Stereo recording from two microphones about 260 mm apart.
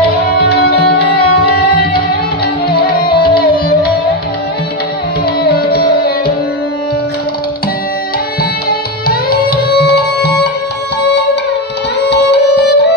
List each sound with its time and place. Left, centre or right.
3.1 s music: left
5.4 s music: left
8.6 s music: left
12.1 s music: left